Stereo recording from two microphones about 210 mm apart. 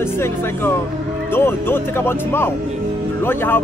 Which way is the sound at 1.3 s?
10° left (ahead or behind).